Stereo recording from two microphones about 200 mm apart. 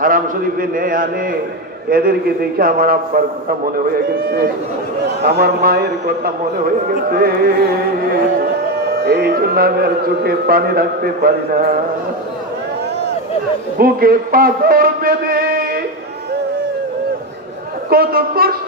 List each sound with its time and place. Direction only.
0.0 s speech: 45° right (ahead or behind)
9.0 s speech: 50° right (ahead or behind)
13.7 s a man's voice: 45° right (ahead or behind)
17.8 s speech: 50° right (ahead or behind)